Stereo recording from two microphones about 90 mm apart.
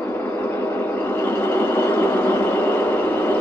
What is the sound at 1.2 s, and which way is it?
Vehicle, 25° left (ahead or behind).